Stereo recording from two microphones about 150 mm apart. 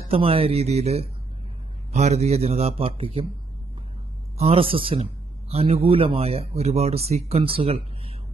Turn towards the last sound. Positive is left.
turn(degrees=-40)  # may be behind; listen again after turning